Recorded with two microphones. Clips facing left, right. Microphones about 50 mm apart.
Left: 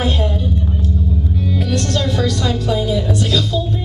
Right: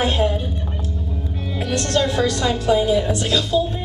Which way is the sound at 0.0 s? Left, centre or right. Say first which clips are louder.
Even; centre.